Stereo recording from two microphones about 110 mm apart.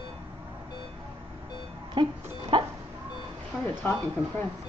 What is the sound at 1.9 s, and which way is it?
Music, 50° right (ahead or behind).